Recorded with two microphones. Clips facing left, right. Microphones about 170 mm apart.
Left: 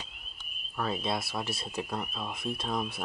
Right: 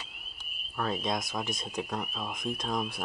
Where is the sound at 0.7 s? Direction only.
Centre (ahead or behind).